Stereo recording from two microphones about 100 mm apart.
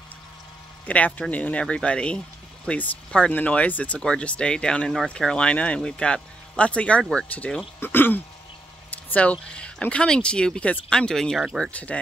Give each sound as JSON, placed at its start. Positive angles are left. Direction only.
{"t": 0.8, "sound": "speech", "side_deg": 15}